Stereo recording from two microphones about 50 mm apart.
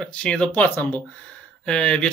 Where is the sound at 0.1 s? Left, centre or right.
Left.